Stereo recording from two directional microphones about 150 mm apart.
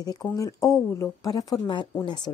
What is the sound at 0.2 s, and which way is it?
Speech, 20° left (ahead or behind).